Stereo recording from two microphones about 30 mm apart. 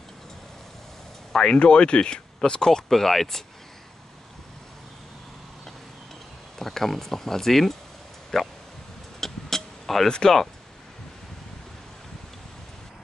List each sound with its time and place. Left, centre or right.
1.3 s speech: left
1.6 s speech: left
2.9 s speech: centre
6.6 s speech: centre
9.2 s vehicle: centre
10.0 s speech: left